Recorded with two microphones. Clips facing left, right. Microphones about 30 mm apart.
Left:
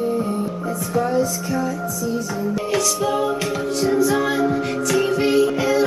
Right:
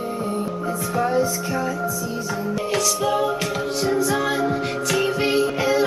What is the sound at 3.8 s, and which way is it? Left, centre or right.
Music, centre.